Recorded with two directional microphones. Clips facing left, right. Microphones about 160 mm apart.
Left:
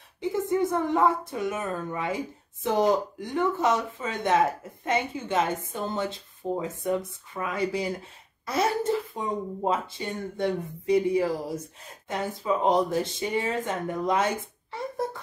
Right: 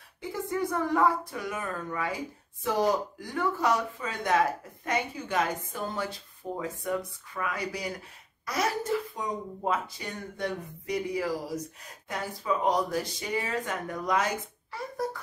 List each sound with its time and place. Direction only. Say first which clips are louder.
0.2 s a woman's voice: left 6 dB; 20° left (ahead or behind)